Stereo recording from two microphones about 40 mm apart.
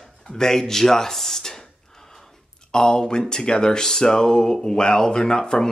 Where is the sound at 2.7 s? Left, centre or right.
Centre.